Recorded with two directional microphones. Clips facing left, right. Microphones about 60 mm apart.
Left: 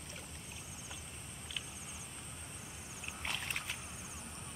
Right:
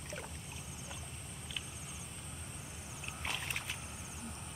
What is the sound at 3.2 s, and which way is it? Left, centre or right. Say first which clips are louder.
Boat: even; centre.